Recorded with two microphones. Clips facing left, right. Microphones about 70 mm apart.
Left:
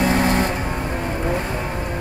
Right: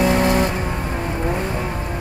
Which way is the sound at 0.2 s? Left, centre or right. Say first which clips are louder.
Right 2 dB; left.